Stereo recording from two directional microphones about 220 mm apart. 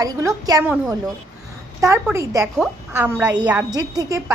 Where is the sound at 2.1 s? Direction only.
10° right (ahead or behind).